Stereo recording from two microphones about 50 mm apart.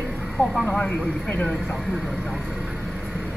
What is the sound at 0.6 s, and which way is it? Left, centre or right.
Speech, left.